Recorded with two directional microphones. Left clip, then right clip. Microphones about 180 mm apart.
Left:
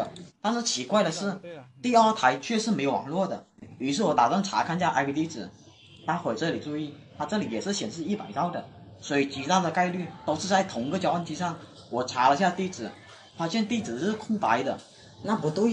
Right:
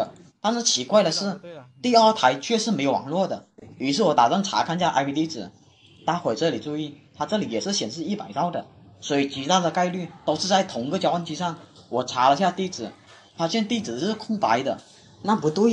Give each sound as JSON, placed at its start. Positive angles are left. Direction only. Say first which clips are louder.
{"t": 0.4, "sound": "a man's voice", "louder": "right 5 dB", "side_deg": -20}
{"t": 15.6, "sound": "speech", "louder": "right 5 dB", "side_deg": -30}